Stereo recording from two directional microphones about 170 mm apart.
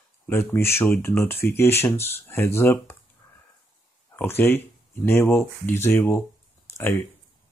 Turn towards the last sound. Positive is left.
turn(degrees=15)  # may be behind; listen again after turning